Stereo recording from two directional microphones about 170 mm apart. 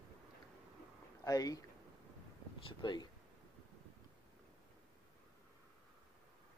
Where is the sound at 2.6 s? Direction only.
25° left (ahead or behind).